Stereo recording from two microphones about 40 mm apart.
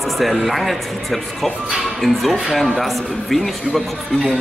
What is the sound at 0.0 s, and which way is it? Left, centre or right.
A man's voice, centre.